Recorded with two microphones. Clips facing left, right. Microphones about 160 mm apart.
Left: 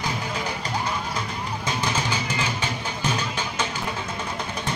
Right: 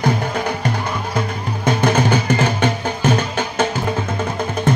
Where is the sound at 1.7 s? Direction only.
55° right (ahead or behind).